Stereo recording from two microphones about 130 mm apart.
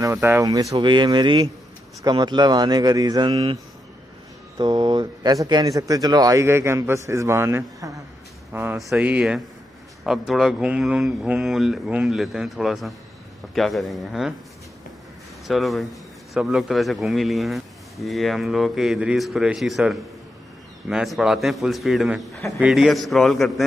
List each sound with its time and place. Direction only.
0.0 s speech: 20° right (ahead or behind)
0.7 s speech: 35° right (ahead or behind)
4.6 s speech: 35° right (ahead or behind)
8.7 s a man's voice: centre (ahead or behind)
15.4 s a man's voice: centre (ahead or behind)